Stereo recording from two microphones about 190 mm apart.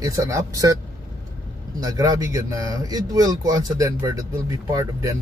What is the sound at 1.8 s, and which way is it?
Speech, 20° right (ahead or behind).